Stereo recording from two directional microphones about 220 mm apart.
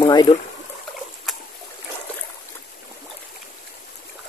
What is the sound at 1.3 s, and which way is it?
Boat, centre (ahead or behind).